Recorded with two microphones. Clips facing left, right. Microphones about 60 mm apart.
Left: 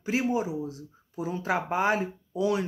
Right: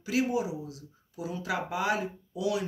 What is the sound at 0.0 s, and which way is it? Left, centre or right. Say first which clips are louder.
Speech: left 1 dB; left.